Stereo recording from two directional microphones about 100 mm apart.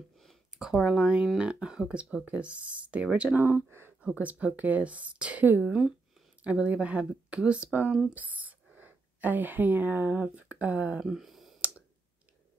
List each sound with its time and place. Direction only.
0.2 s speech: centre (ahead or behind)
8.2 s speech: 15° right (ahead or behind)
11.1 s speech: 5° right (ahead or behind)